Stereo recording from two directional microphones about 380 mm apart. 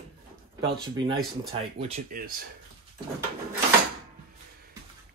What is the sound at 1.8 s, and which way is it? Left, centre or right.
Speech, centre.